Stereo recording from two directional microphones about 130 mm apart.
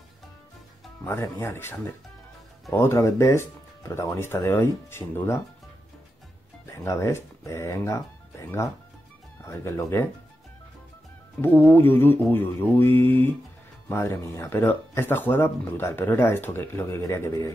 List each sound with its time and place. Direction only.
1.0 s speech: 20° left (ahead or behind)
6.8 s speech: 20° left (ahead or behind)
11.4 s speech: 15° left (ahead or behind)